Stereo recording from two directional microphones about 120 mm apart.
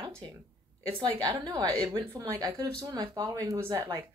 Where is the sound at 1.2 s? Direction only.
35° right (ahead or behind).